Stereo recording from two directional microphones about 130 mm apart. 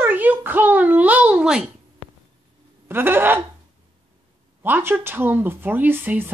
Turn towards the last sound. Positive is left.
turn(degrees=-15)  # may be behind; listen again after turning